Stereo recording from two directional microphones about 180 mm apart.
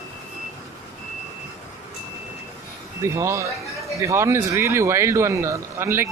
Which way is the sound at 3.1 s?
15° right (ahead or behind).